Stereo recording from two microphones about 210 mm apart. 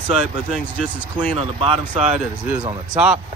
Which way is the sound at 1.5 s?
25° right (ahead or behind).